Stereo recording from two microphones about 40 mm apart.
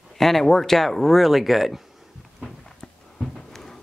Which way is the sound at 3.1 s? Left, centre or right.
Centre.